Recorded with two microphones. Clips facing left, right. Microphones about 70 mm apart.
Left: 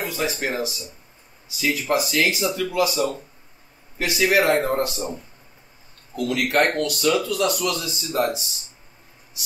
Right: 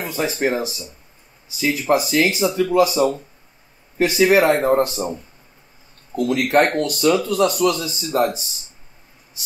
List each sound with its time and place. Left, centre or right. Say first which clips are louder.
0.0 s speech: right 4 dB; right
6.1 s speech: right 4 dB; right